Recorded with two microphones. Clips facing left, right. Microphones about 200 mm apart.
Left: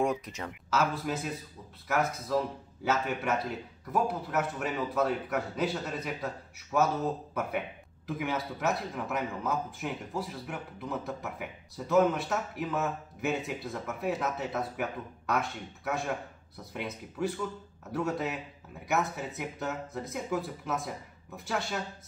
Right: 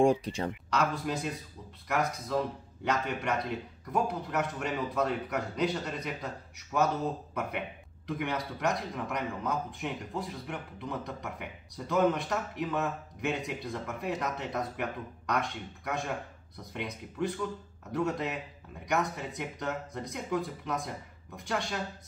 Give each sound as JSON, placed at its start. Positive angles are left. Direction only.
{"t": 0.0, "sound": "speech", "side_deg": -30}
{"t": 0.7, "sound": "a man's voice", "side_deg": 5}
{"t": 8.1, "sound": "a man's voice", "side_deg": 5}